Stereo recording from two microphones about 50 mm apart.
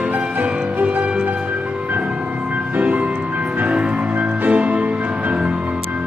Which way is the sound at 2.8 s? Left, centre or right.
Right.